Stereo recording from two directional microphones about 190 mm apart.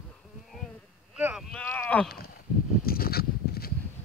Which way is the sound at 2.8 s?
50° left (ahead or behind).